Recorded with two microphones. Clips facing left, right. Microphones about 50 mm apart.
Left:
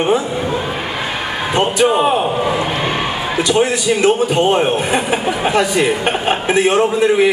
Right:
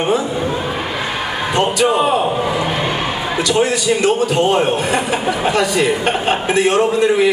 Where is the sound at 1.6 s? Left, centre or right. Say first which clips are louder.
Left 1 dB; centre.